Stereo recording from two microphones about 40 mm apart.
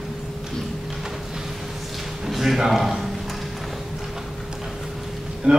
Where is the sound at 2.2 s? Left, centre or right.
Centre.